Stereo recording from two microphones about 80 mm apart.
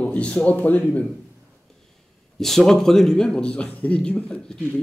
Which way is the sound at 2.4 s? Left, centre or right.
Centre.